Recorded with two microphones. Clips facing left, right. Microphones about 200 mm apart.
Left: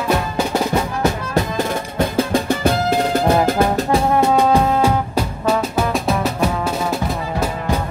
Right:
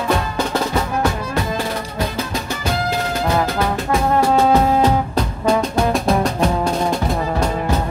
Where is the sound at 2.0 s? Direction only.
55° left (ahead or behind).